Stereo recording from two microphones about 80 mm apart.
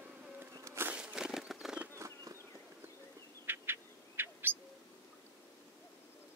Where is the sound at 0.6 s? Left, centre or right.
Right.